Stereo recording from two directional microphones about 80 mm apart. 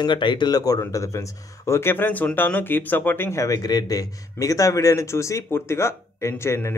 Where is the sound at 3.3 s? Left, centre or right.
Left.